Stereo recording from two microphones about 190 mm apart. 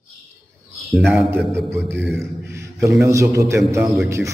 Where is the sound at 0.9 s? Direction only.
5° right (ahead or behind).